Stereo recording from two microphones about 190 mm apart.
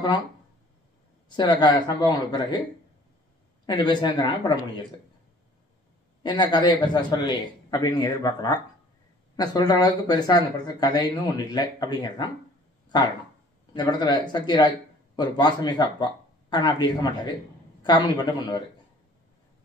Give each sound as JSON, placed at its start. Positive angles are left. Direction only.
{"t": 1.3, "sound": "speech", "side_deg": 25}
{"t": 3.6, "sound": "speech", "side_deg": 25}
{"t": 6.2, "sound": "speech", "side_deg": 25}
{"t": 13.7, "sound": "speech", "side_deg": 20}